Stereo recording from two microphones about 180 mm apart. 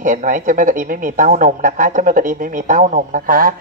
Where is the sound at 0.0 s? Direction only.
45° right (ahead or behind).